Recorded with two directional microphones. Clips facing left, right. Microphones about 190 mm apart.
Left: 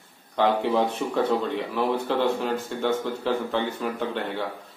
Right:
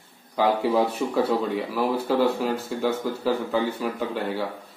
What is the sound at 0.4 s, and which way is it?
A man's voice, 5° right (ahead or behind).